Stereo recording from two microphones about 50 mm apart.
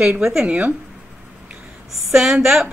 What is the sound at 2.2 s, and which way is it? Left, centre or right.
Speech, centre.